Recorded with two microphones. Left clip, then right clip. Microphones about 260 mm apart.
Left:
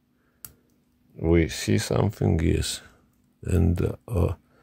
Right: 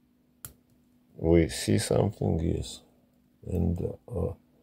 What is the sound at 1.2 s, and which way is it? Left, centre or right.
Speech, left.